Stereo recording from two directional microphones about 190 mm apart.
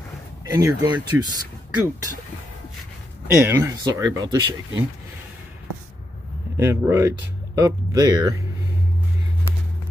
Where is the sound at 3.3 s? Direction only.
15° right (ahead or behind).